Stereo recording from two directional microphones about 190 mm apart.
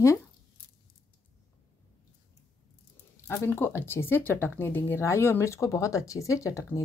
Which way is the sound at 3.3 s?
10° left (ahead or behind).